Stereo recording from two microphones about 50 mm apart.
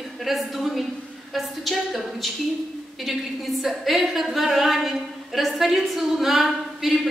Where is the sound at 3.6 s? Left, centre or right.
Centre.